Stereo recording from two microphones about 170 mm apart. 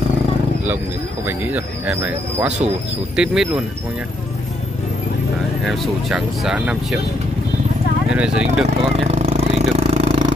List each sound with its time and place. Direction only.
1.2 s speech: 10° right (ahead or behind)
5.6 s speech: centre (ahead or behind)
8.1 s speech: 5° right (ahead or behind)
8.6 s a sound: 40° right (ahead or behind)